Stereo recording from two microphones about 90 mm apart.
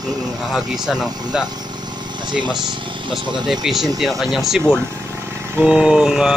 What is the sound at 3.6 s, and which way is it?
Speech, 5° right (ahead or behind).